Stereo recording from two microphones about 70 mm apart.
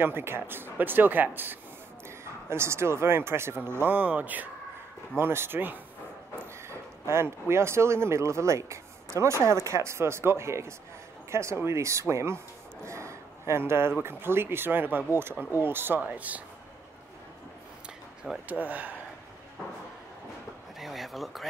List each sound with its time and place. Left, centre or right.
0.0 s speech: right
2.0 s speech: right
18.5 s speech: right
20.8 s a sound: centre